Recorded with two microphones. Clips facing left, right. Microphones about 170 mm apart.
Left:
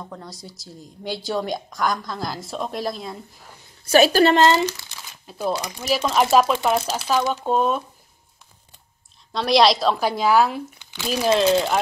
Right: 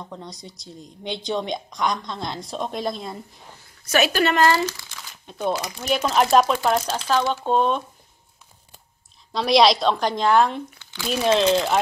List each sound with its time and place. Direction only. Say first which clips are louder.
0.0 s speech: even; centre (ahead or behind)
3.8 s speech: left 5 dB; 35° left (ahead or behind)
5.3 s speech: even; 5° left (ahead or behind)
9.3 s speech: even; centre (ahead or behind)
10.8 s crumpling: even; 15° left (ahead or behind)
11.1 s speech: left 1 dB; centre (ahead or behind)